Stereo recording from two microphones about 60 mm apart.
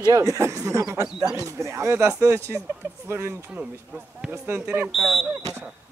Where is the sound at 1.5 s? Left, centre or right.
Right.